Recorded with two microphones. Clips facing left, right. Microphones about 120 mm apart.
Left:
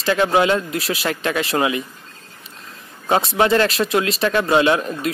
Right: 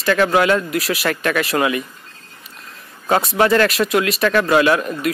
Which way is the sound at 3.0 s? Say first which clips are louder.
Right 1 dB; 25° left (ahead or behind).